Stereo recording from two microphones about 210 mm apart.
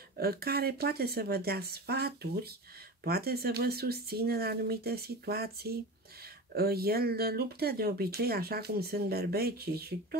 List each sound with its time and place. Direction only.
0.2 s speech: 45° right (ahead or behind)